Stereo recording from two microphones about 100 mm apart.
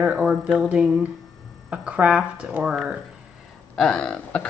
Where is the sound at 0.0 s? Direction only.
10° right (ahead or behind).